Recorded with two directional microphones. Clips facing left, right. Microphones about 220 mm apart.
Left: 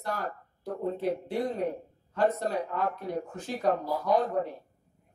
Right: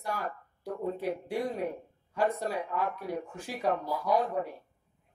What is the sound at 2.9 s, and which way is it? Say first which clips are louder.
Speech: left 2 dB; 10° right (ahead or behind).